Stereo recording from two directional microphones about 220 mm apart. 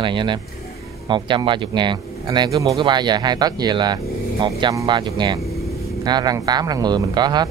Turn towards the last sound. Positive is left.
turn(degrees=-20)  # may be behind; listen again after turning